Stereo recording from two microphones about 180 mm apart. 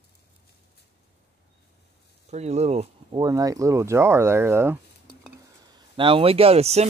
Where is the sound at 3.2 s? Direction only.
20° right (ahead or behind).